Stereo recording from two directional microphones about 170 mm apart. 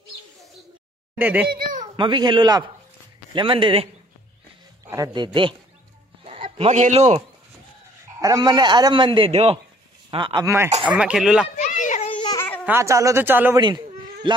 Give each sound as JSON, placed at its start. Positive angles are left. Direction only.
{"t": 1.1, "sound": "speech", "side_deg": -10}
{"t": 1.5, "sound": "a sound", "side_deg": -60}
{"t": 1.8, "sound": "a man's voice", "side_deg": -25}
{"t": 4.8, "sound": "speech", "side_deg": -20}
{"t": 6.2, "sound": "a sound", "side_deg": -35}
{"t": 8.2, "sound": "speech", "side_deg": -20}
{"t": 11.0, "sound": "speech", "side_deg": -5}
{"t": 11.5, "sound": "children playing", "side_deg": 45}
{"t": 12.4, "sound": "a sound", "side_deg": 10}
{"t": 12.6, "sound": "speech", "side_deg": -15}
{"t": 13.6, "sound": "a man's voice", "side_deg": -25}